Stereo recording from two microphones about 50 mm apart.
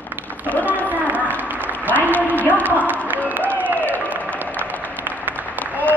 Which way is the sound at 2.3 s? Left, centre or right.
Left.